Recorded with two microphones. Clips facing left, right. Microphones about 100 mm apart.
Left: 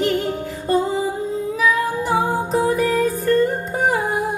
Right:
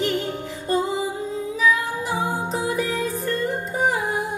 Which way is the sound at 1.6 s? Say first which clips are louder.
Left 2 dB; 45° left (ahead or behind).